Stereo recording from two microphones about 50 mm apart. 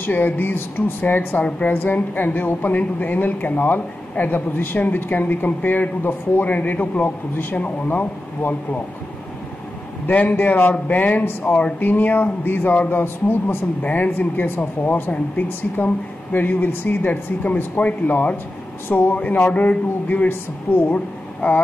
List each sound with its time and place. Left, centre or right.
0.0 s a woman's voice: left
10.0 s a woman's voice: left
13.8 s a woman's voice: left
15.0 s a woman's voice: left
18.9 s speech: left
19.1 s a woman's voice: left